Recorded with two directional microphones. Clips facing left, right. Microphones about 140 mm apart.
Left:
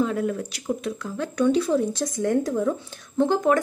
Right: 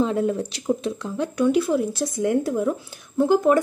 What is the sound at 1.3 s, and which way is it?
A woman's voice, 10° right (ahead or behind).